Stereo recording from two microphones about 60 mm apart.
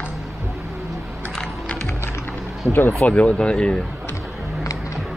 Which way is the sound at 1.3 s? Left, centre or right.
Centre.